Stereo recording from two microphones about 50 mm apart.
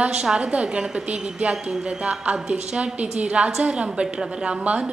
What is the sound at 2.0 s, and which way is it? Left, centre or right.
A woman's voice, right.